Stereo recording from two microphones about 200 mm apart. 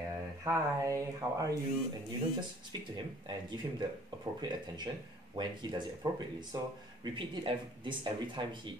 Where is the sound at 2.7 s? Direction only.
20° right (ahead or behind).